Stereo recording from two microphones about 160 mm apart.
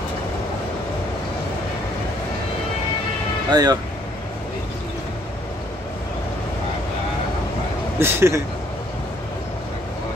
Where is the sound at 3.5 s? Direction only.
25° right (ahead or behind).